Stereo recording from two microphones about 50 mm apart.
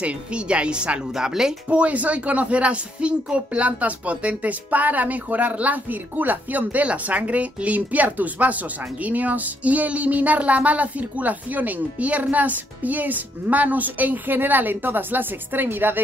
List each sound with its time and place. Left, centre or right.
0.0 s speech: right
1.1 s speech: centre
1.7 s speech: right